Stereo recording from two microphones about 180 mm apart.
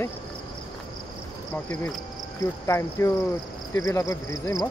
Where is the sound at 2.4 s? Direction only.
15° left (ahead or behind).